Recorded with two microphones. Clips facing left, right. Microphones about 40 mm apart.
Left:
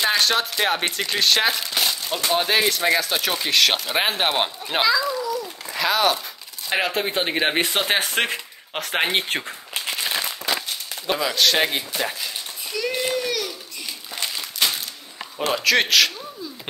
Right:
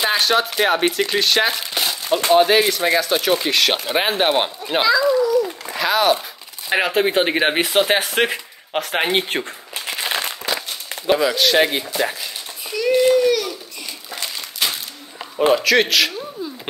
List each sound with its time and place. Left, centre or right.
0.0 s speech: centre
10.0 s crumpling: right
11.1 s speech: centre
12.7 s a sound: centre
14.6 s a sound: centre
15.3 s speech: centre